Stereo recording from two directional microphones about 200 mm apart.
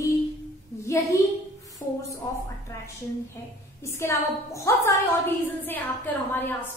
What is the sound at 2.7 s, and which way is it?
A woman's voice, 15° left (ahead or behind).